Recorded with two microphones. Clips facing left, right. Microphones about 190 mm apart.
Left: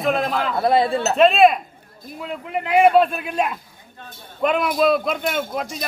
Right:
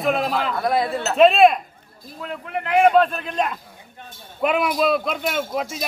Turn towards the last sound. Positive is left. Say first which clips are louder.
# even
turn(degrees=0)  # may be behind; listen again after turning